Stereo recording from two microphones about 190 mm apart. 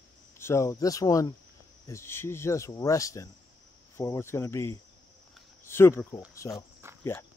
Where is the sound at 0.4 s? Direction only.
15° left (ahead or behind).